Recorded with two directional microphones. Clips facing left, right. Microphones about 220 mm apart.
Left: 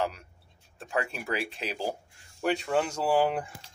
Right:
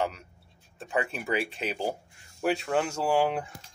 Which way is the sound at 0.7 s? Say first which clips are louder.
Right 2 dB; centre (ahead or behind).